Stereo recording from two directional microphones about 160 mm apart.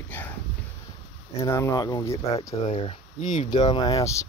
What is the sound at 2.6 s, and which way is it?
Speech, 45° left (ahead or behind).